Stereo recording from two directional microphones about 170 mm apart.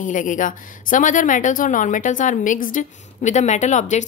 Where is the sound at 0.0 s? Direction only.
50° left (ahead or behind).